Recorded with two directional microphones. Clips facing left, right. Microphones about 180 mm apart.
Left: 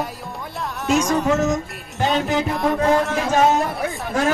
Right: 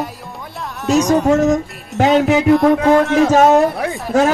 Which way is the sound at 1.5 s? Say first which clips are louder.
Right 6 dB; 75° right (ahead or behind).